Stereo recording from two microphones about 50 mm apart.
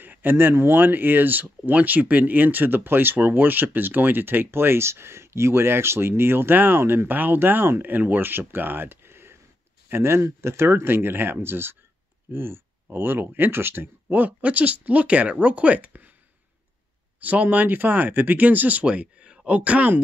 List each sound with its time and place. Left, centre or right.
0.0 s speech: right
7.1 s speech: right
14.1 s speech: right
17.2 s speech: right